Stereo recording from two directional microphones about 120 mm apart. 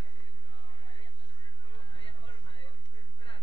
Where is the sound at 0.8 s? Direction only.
45° left (ahead or behind).